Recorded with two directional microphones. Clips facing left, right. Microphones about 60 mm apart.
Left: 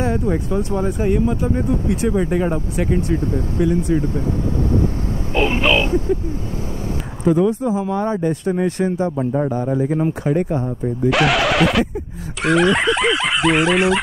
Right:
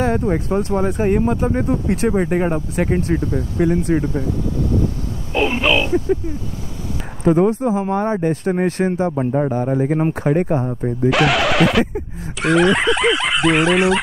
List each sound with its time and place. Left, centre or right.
0.0 s speech: right
5.3 s speech: centre
7.2 s speech: right
11.1 s speech: centre